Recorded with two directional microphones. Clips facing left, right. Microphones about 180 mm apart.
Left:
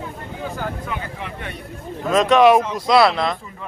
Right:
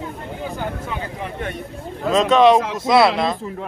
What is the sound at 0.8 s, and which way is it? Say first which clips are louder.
Speech: right 1 dB; 25° right (ahead or behind).